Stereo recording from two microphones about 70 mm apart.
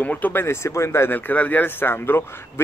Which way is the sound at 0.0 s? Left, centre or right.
Left.